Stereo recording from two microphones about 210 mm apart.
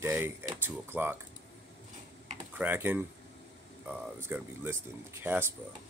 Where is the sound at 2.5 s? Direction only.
10° right (ahead or behind).